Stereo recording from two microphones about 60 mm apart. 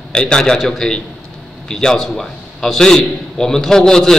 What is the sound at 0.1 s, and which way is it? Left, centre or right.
A man's voice, centre.